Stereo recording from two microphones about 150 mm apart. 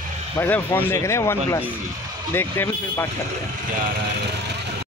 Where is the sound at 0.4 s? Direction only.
15° left (ahead or behind).